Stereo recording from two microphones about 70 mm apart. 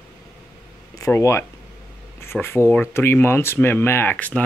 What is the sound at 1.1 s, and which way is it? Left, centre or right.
Speech, left.